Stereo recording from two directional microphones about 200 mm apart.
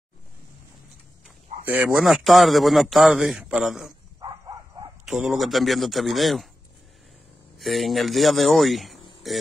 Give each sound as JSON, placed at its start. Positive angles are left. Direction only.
{"t": 1.7, "sound": "a man's voice", "side_deg": -5}
{"t": 4.2, "sound": "a sound", "side_deg": -20}
{"t": 5.0, "sound": "a man's voice", "side_deg": 0}
{"t": 7.5, "sound": "a man's voice", "side_deg": 0}